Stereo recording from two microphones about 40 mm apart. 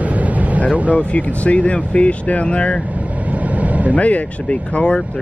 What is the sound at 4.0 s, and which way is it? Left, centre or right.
Speech, left.